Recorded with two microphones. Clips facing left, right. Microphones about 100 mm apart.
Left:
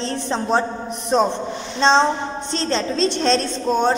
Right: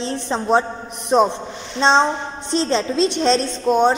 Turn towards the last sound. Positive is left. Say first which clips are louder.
# right 3 dB
turn(degrees=-10)  # may be behind; listen again after turning